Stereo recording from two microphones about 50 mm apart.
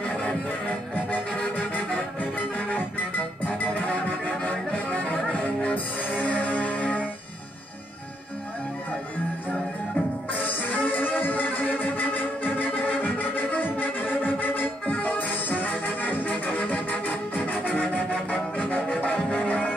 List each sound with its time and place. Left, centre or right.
0.1 s music: left
2.3 s music: left
10.4 s music: left